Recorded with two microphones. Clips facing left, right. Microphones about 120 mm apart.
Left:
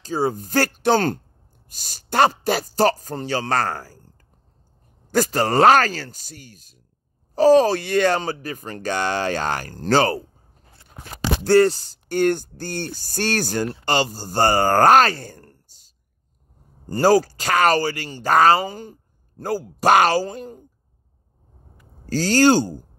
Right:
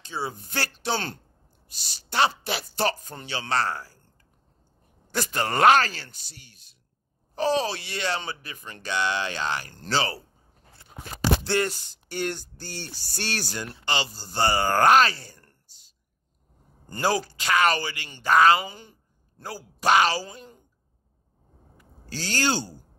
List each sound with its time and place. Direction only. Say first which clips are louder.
0.0 s speech: left 10 dB; 45° left (ahead or behind)
11.4 s speech: left 11 dB; 35° left (ahead or behind)
12.1 s speech: left 11 dB; 50° left (ahead or behind)
22.0 s speech: left 11 dB; 45° left (ahead or behind)